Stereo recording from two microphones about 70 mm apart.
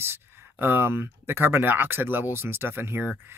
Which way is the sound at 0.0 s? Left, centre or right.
Right.